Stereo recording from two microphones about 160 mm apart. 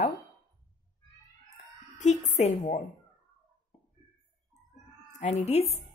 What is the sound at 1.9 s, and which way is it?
Speech, 45° left (ahead or behind).